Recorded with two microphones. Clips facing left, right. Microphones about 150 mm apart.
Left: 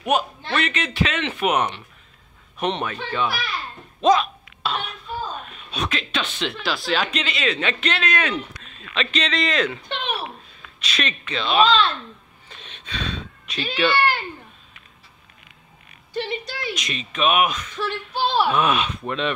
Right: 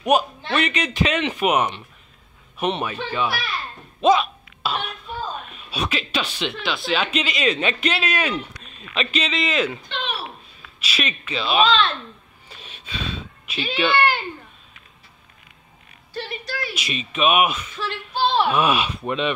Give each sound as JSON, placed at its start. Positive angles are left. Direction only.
{"t": 0.0, "sound": "speech", "side_deg": -10}
{"t": 4.0, "sound": "a sound", "side_deg": -5}
{"t": 5.7, "sound": "speech", "side_deg": -5}
{"t": 10.8, "sound": "speech", "side_deg": -5}
{"t": 12.4, "sound": "a sound", "side_deg": -10}
{"t": 13.7, "sound": "speech", "side_deg": -10}
{"t": 16.1, "sound": "a sound", "side_deg": 20}
{"t": 16.7, "sound": "speech", "side_deg": -5}
{"t": 17.7, "sound": "speech", "side_deg": 15}
{"t": 18.5, "sound": "speech", "side_deg": -10}